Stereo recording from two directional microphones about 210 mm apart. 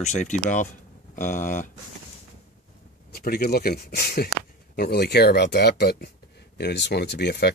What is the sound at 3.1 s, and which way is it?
Speech, 45° left (ahead or behind).